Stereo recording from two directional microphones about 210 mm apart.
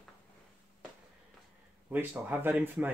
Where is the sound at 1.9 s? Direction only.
10° right (ahead or behind).